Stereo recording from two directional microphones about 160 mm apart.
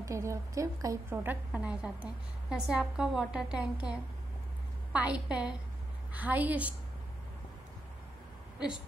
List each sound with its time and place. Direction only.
0.0 s a woman's voice: 20° right (ahead or behind)
4.9 s a woman's voice: 10° right (ahead or behind)